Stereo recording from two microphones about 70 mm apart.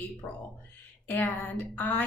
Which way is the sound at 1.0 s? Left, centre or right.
Left.